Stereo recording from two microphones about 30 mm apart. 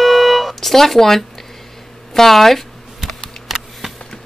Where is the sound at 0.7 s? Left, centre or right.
Centre.